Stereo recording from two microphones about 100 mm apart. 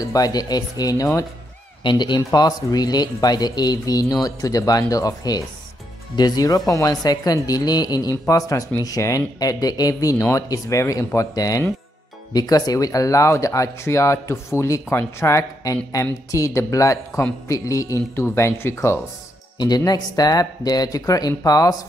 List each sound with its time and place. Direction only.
0.0 s speech: 35° left (ahead or behind)
1.8 s speech: 50° left (ahead or behind); by 18.9 s 25° left (ahead or behind)
19.6 s speech: 40° left (ahead or behind)